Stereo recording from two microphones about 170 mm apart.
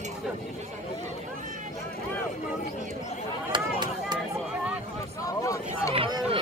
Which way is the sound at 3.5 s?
25° right (ahead or behind).